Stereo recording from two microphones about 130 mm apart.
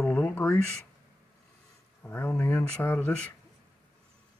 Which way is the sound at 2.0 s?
15° left (ahead or behind).